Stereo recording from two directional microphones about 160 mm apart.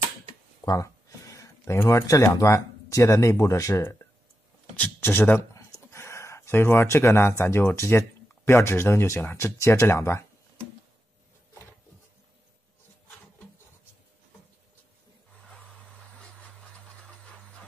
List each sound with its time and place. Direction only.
0.7 s speech: 20° left (ahead or behind)